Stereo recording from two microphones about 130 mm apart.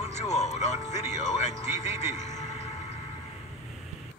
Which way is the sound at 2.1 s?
65° left (ahead or behind).